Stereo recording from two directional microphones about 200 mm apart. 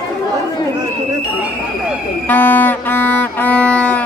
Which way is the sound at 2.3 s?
10° left (ahead or behind).